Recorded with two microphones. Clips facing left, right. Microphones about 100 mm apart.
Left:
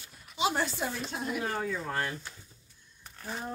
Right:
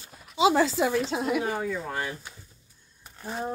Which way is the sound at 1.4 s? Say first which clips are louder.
Right 4 dB; 10° right (ahead or behind).